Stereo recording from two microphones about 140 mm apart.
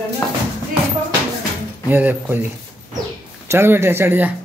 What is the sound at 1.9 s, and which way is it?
Speech, 10° right (ahead or behind).